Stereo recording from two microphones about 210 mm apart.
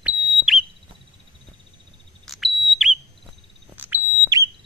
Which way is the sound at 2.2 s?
Centre (ahead or behind).